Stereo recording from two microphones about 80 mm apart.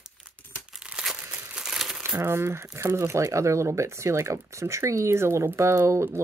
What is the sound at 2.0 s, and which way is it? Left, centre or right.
Speech, right.